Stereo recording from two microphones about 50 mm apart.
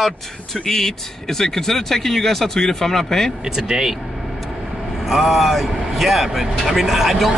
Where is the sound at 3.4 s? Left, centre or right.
Centre.